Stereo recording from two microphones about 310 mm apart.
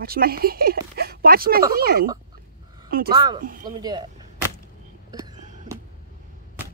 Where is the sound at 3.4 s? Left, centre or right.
Right.